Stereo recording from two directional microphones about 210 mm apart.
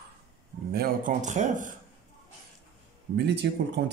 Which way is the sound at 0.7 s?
35° right (ahead or behind).